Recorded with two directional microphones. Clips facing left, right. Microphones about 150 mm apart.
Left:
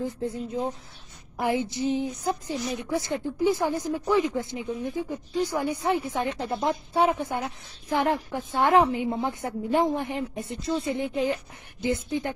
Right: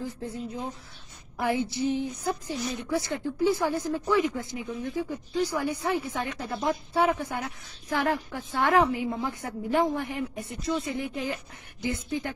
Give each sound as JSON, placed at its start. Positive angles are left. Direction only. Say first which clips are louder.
{"t": 0.0, "sound": "a woman's voice", "louder": "left 4 dB", "side_deg": 25}